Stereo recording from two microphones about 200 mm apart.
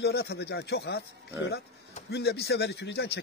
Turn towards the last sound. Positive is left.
turn(degrees=55)  # may be behind; listen again after turning